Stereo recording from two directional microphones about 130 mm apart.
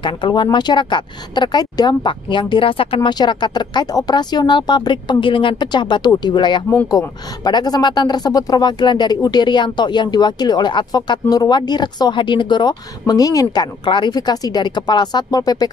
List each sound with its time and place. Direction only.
0.0 s speech: 35° left (ahead or behind)